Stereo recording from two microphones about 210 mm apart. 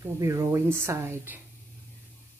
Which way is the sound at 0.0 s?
15° right (ahead or behind).